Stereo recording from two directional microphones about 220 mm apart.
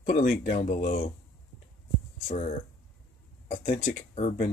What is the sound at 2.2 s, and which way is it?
Speech, 30° left (ahead or behind).